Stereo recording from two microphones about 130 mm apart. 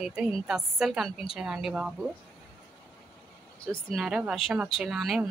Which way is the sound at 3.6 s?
Centre (ahead or behind).